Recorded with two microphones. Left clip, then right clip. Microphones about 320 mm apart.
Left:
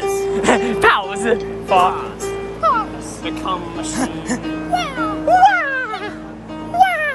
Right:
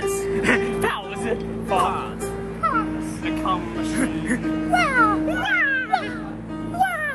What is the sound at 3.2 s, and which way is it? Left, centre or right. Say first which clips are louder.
Music: left 2 dB; centre.